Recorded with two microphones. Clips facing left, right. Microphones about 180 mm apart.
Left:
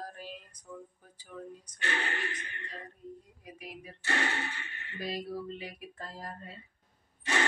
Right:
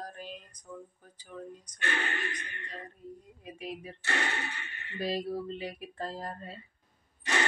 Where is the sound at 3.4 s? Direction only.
25° right (ahead or behind).